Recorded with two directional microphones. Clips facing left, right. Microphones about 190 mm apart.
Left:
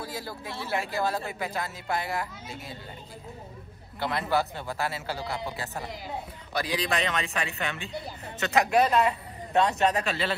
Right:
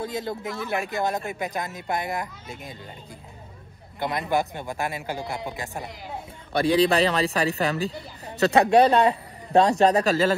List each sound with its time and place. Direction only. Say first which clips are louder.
0.0 s speech: right 7 dB; 20° right (ahead or behind)
4.0 s speech: right 2 dB; 15° right (ahead or behind)
6.5 s a man's voice: right 9 dB; 30° right (ahead or behind)